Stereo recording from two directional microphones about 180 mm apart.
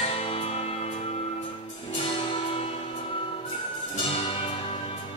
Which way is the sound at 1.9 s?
25° left (ahead or behind).